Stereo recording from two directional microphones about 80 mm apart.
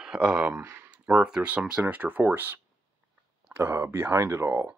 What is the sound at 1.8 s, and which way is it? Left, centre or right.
Speech, right.